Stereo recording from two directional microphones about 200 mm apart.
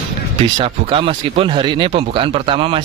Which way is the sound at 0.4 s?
30° right (ahead or behind).